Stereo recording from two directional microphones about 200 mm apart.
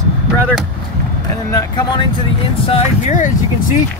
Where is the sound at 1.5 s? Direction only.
20° left (ahead or behind).